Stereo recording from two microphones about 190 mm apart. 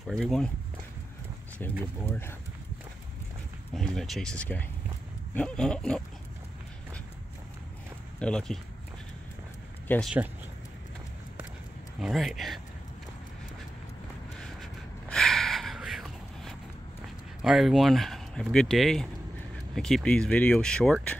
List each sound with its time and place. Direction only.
0.0 s speech: centre (ahead or behind)
1.6 s speech: 10° left (ahead or behind)
3.7 s speech: centre (ahead or behind)
8.2 s speech: 5° left (ahead or behind)
9.8 s speech: 5° left (ahead or behind)
12.0 s speech: centre (ahead or behind)
14.6 s gasp: centre (ahead or behind)
17.4 s speech: centre (ahead or behind)